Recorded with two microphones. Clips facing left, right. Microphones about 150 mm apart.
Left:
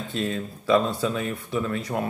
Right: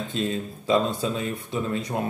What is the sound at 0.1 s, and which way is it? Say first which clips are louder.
Speech: left 1 dB; 25° right (ahead or behind).